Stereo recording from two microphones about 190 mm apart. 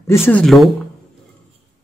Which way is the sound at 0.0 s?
15° left (ahead or behind).